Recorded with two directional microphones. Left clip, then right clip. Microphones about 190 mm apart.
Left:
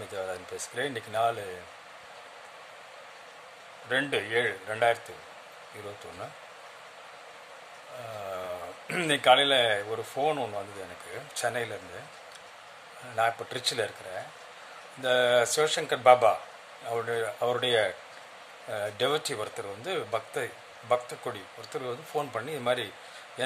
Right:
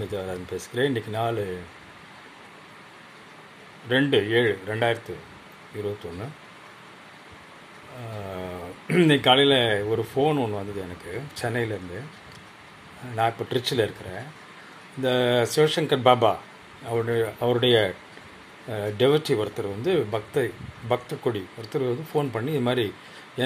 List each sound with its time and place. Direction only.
0.1 s speech: 10° left (ahead or behind)
3.9 s speech: 10° left (ahead or behind)
8.3 s speech: 15° left (ahead or behind)
13.1 s speech: 5° left (ahead or behind)
15.0 s speech: 10° left (ahead or behind)